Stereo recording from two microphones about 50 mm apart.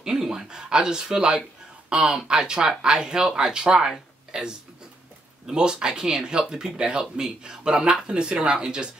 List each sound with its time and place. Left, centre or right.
0.0 s speech: centre